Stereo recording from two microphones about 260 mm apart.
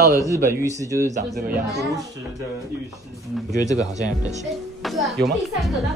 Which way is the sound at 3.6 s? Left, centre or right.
Centre.